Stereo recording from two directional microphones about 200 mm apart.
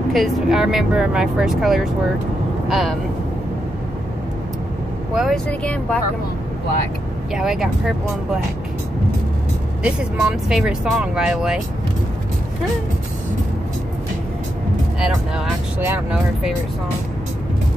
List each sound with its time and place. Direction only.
0.1 s speech: centre (ahead or behind)
5.1 s speech: centre (ahead or behind)
7.3 s speech: centre (ahead or behind)
9.8 s speech: 5° right (ahead or behind)
15.0 s speech: 5° right (ahead or behind)